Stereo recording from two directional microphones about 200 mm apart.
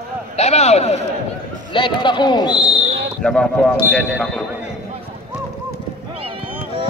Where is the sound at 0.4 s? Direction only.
35° left (ahead or behind).